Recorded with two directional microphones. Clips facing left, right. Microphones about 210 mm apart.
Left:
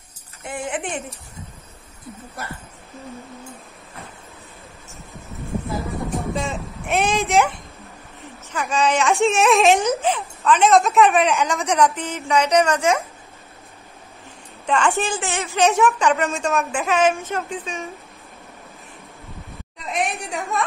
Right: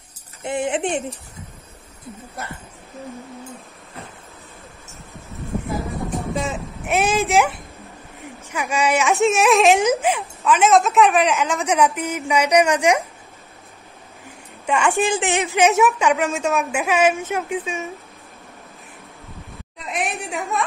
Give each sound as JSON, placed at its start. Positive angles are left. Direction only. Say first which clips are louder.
{"t": 0.4, "sound": "speech", "louder": "right 6 dB", "side_deg": -25}
{"t": 6.3, "sound": "a sound", "louder": "right 1 dB", "side_deg": -5}
{"t": 8.2, "sound": "speech", "louder": "even", "side_deg": -10}
{"t": 9.9, "sound": "a woman's voice", "louder": "right 1 dB", "side_deg": -10}
{"t": 14.7, "sound": "a woman's voice", "louder": "right 2 dB", "side_deg": -10}
{"t": 19.8, "sound": "a woman's voice", "louder": "left 1 dB", "side_deg": 0}